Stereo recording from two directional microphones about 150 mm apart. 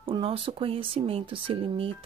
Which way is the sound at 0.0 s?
40° right (ahead or behind).